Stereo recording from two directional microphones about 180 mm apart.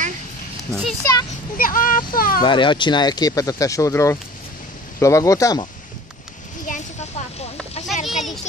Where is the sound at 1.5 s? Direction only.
50° left (ahead or behind).